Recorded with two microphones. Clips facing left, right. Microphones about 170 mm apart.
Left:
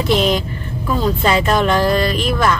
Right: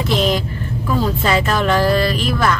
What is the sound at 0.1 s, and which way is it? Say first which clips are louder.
Vehicle: left 2 dB; centre (ahead or behind).